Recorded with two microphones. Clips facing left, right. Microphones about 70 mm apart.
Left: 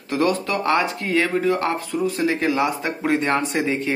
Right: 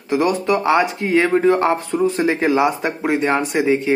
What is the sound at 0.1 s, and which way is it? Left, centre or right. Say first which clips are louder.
Speech: right 4 dB; centre.